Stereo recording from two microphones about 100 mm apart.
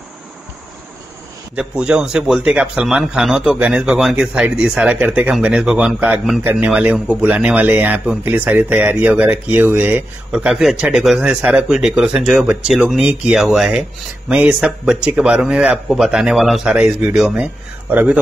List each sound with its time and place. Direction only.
1.5 s a man's voice: 10° right (ahead or behind)
17.9 s speech: 15° right (ahead or behind)